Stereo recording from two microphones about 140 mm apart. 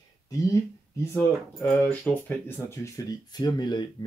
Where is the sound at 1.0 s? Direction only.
20° left (ahead or behind).